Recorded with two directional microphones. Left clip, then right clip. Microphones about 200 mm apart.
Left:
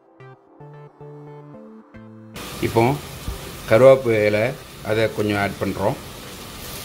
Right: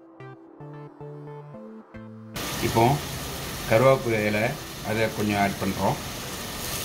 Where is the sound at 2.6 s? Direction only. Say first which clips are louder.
Left 3 dB; 55° left (ahead or behind).